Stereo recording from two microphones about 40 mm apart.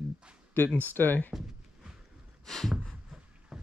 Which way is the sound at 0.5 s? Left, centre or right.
Left.